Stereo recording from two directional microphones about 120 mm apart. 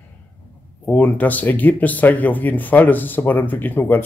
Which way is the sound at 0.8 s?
15° left (ahead or behind).